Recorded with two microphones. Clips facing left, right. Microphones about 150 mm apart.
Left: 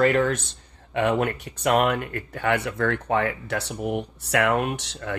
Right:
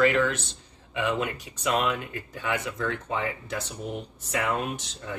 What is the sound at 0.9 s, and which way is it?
Speech, 55° left (ahead or behind).